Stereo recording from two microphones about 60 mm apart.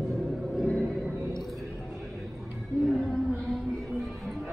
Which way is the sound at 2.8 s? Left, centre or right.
Centre.